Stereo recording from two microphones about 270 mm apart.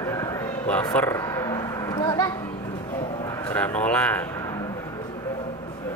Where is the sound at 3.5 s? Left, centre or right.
Centre.